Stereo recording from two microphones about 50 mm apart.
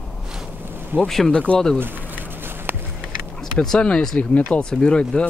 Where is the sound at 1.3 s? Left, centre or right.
Left.